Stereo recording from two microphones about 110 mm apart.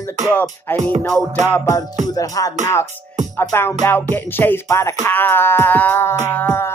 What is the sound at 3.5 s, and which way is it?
Music, 20° left (ahead or behind).